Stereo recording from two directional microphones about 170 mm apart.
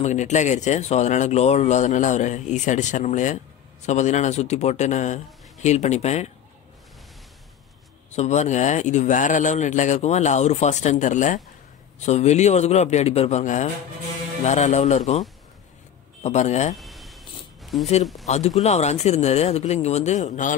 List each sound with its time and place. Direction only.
0.0 s speech: 45° left (ahead or behind)
8.2 s speech: 40° left (ahead or behind)
16.7 s a sound: centre (ahead or behind)
18.2 s speech: 40° left (ahead or behind)